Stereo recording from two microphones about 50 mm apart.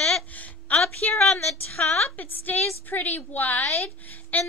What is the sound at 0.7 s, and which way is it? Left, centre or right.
Speech, left.